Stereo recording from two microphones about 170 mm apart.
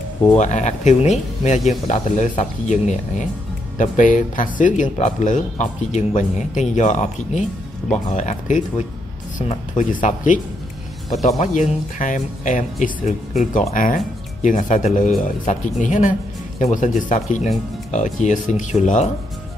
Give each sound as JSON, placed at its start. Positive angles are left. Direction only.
{"t": 0.4, "sound": "speech", "side_deg": 45}
{"t": 17.9, "sound": "speech", "side_deg": 45}